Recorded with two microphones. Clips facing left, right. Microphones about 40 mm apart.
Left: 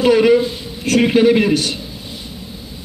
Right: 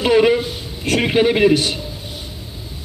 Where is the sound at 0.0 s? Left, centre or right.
Centre.